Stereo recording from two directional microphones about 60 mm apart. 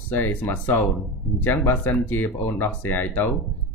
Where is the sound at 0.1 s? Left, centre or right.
Left.